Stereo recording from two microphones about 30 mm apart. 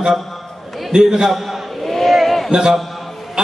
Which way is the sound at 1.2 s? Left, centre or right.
Centre.